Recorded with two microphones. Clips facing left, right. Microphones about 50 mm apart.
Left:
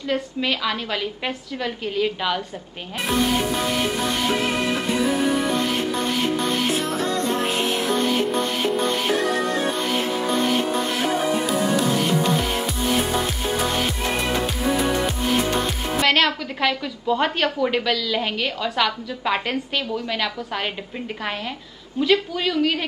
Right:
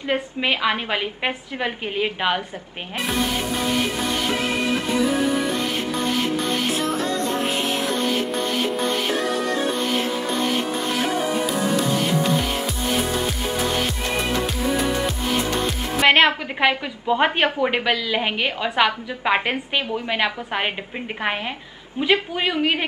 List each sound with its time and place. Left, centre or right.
0.1 s a woman's voice: right
16.0 s a woman's voice: right
22.0 s a woman's voice: right